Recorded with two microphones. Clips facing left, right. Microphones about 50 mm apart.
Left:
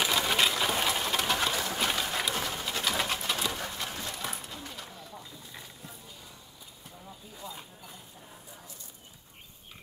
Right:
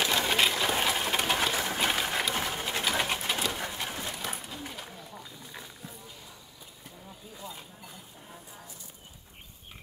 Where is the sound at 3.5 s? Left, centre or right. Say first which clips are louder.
Right 1 dB; centre.